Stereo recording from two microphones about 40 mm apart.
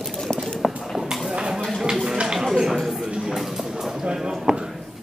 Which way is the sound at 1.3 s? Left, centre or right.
Right.